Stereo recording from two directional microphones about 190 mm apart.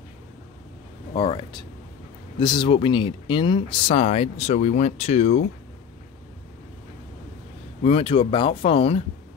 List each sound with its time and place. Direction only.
1.1 s speech: 25° left (ahead or behind)
7.8 s speech: 30° left (ahead or behind)